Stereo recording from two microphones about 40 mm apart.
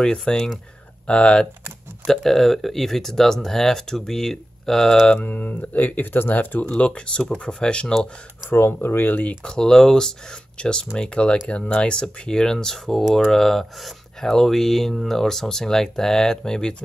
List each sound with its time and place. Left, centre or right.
0.0 s speech: centre
2.0 s speech: centre
5.2 s speech: left
6.7 s speech: left
8.5 s speech: left
9.4 s speech: centre